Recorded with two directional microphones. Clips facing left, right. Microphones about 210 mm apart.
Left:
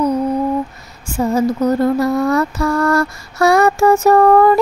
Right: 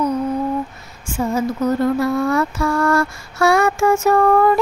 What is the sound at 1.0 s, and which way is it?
Speech, 35° left (ahead or behind).